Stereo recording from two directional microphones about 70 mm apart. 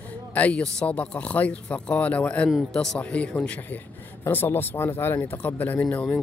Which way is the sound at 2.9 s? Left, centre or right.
Centre.